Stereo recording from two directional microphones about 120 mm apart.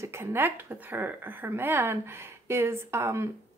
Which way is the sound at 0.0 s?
20° right (ahead or behind).